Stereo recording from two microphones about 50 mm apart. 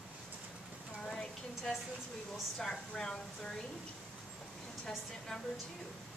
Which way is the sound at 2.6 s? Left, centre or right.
Centre.